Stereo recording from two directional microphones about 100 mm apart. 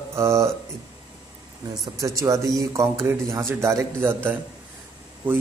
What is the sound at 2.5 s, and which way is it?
A man's voice, 30° right (ahead or behind).